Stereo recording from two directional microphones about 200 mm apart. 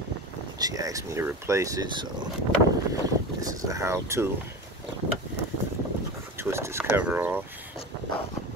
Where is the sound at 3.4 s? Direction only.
15° right (ahead or behind).